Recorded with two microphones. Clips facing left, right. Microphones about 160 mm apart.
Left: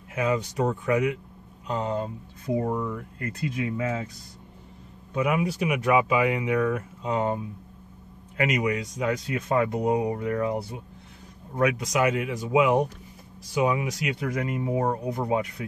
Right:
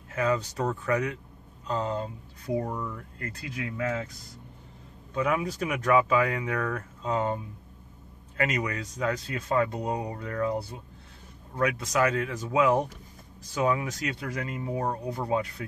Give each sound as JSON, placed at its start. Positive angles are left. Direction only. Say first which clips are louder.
{"t": 0.1, "sound": "speech", "louder": "left 1 dB", "side_deg": 15}
{"t": 3.2, "sound": "speech", "louder": "left 6 dB", "side_deg": 20}
{"t": 5.1, "sound": "speech", "louder": "left 2 dB", "side_deg": 15}
{"t": 8.4, "sound": "speech", "louder": "left 4 dB", "side_deg": 15}